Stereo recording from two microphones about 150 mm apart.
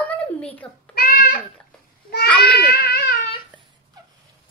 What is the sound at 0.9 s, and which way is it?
Speech, 75° left (ahead or behind).